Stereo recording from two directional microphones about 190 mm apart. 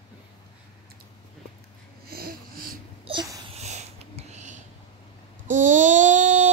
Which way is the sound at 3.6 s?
35° right (ahead or behind).